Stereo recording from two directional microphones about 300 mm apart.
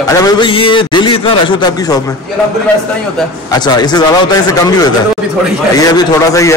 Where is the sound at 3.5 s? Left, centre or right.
Centre.